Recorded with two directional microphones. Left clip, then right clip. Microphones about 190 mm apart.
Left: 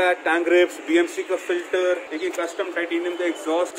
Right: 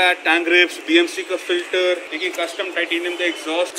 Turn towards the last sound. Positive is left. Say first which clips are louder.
# right 2 dB
turn(degrees=15)  # may be behind; listen again after turning